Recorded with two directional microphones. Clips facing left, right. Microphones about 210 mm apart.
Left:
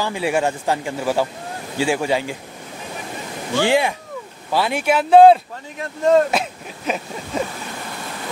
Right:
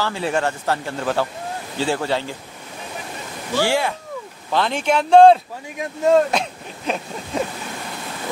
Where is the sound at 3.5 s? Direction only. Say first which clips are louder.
Left 2 dB; 15° left (ahead or behind).